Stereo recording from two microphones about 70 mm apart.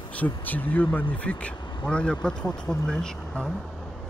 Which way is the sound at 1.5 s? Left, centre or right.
Left.